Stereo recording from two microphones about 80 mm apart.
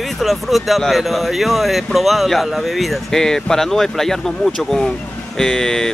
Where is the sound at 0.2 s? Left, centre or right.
Centre.